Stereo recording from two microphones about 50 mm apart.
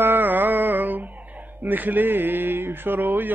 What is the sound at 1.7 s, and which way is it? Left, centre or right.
Speech, right.